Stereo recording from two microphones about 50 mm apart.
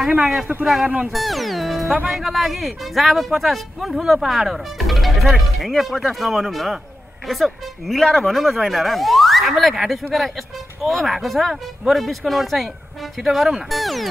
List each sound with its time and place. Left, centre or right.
0.2 s speech: centre
0.8 s speech: right
1.1 s speech: centre